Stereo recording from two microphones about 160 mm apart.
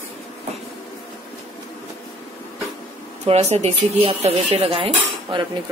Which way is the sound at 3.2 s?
40° right (ahead or behind).